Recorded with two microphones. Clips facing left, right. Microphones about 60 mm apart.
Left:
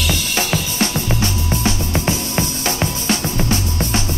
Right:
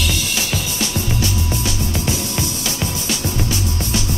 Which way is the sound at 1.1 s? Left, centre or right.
Left.